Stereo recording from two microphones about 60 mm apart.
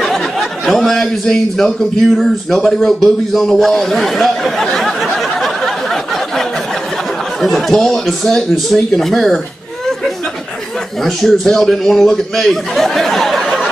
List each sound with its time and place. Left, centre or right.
0.0 s speech: centre
7.4 s speech: centre
11.1 s speech: centre